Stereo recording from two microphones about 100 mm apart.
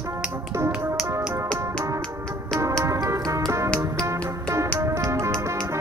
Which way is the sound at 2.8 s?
30° right (ahead or behind).